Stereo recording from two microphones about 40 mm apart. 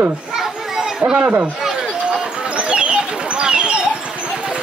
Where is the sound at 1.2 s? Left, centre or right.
Right.